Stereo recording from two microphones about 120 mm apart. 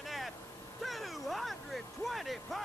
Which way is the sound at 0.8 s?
Centre (ahead or behind).